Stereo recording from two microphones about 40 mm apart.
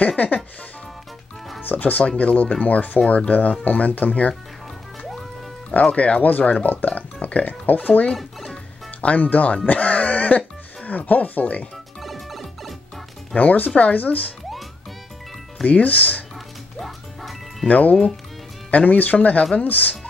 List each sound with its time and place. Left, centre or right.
1.6 s speech: left
5.7 s speech: left
6.2 s speech: left
7.0 s speech: left
8.2 s music: centre
9.0 s speech: left
12.0 s music: centre
13.4 s speech: left
15.6 s speech: left
16.7 s music: centre
17.6 s speech: left